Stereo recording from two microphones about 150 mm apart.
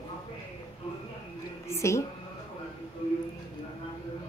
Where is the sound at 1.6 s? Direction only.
20° left (ahead or behind).